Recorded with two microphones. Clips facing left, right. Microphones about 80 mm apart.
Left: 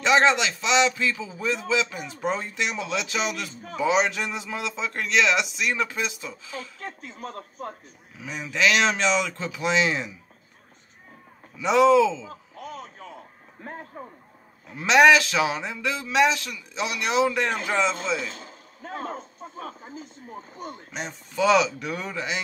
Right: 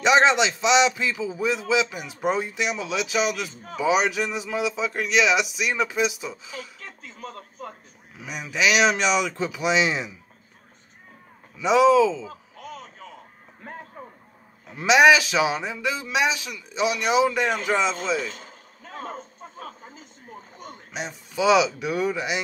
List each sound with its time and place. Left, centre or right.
0.0 s a man's voice: centre
6.8 s speech: left
8.2 s a man's voice: centre
11.6 s speech: centre
12.3 s a sound: left
14.8 s a man's voice: centre
18.5 s a sound: left
20.9 s a man's voice: centre